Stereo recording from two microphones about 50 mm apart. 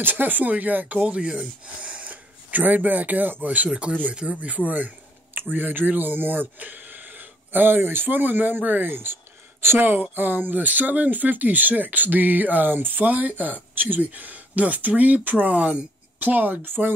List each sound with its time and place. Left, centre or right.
0.0 s speech: right